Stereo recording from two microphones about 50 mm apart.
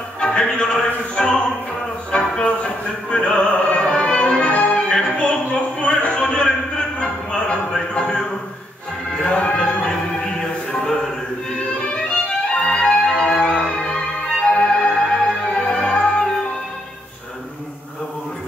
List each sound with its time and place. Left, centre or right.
0.2 s a sound: centre
1.1 s opera: centre
2.1 s music: left
7.0 s a sound: centre
9.2 s music: left
12.6 s music: centre